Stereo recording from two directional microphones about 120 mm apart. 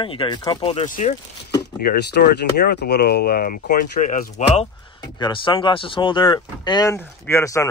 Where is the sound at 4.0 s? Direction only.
85° left.